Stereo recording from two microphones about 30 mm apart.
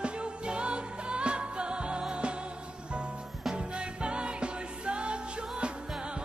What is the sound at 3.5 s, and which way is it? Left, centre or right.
Music, right.